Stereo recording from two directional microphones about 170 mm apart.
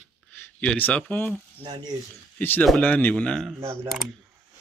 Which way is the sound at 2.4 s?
10° left (ahead or behind).